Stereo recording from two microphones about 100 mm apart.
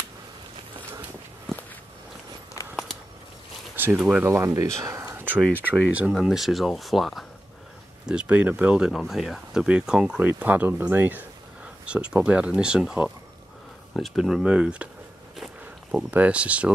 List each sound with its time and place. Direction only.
3.9 s speech: centre (ahead or behind)
4.2 s speech: 25° right (ahead or behind); by 7.2 s centre (ahead or behind)
8.1 s speech: 10° right (ahead or behind)
15.9 s speech: 15° right (ahead or behind)